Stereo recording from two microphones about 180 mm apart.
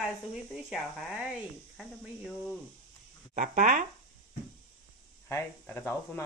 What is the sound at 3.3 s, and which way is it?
Speech, 45° right (ahead or behind).